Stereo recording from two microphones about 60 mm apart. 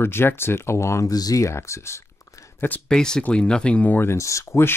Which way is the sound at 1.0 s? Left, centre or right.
Left.